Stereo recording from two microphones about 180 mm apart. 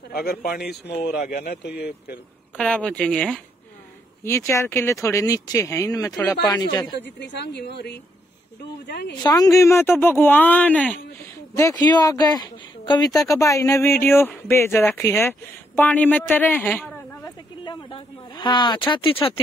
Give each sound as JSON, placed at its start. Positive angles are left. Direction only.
{"t": 0.1, "sound": "speech", "side_deg": 60}
{"t": 2.5, "sound": "speech", "side_deg": 5}
{"t": 4.2, "sound": "speech", "side_deg": 15}
{"t": 7.0, "sound": "speech", "side_deg": 70}
{"t": 9.1, "sound": "speech", "side_deg": 20}
{"t": 17.2, "sound": "a sound", "side_deg": 25}